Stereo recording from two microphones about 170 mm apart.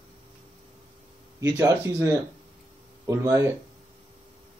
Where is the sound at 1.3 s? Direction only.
20° right (ahead or behind).